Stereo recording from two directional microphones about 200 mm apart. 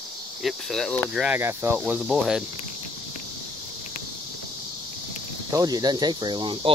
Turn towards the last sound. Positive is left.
turn(degrees=-25)  # may be behind; listen again after turning